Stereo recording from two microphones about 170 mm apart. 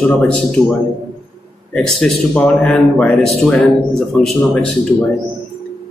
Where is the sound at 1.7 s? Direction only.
5° left (ahead or behind).